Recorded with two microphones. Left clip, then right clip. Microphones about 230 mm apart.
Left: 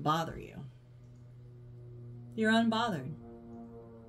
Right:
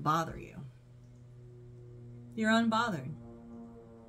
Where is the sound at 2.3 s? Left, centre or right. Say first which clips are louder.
Even; right.